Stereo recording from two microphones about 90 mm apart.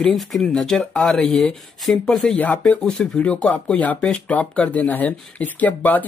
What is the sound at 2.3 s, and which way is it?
Speech, 20° left (ahead or behind).